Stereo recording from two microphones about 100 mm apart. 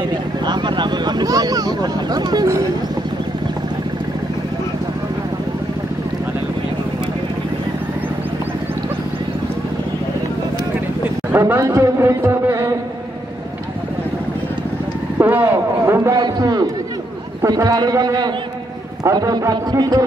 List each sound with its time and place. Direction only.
0.5 s vehicle: 50° right (ahead or behind)
11.3 s a man's voice: 20° right (ahead or behind)
15.1 s a sound: 20° right (ahead or behind)
16.2 s a man's voice: 40° right (ahead or behind)